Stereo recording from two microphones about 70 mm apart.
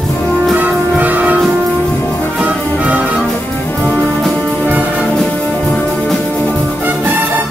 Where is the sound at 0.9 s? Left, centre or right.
Right.